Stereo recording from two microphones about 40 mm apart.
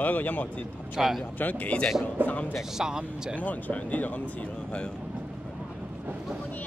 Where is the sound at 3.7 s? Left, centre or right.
Left.